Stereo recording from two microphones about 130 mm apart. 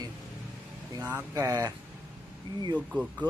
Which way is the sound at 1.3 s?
25° right (ahead or behind).